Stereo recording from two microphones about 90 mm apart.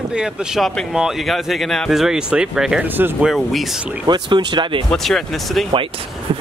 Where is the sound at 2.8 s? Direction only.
20° right (ahead or behind).